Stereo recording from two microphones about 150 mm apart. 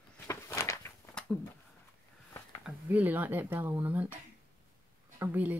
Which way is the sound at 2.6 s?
10° right (ahead or behind).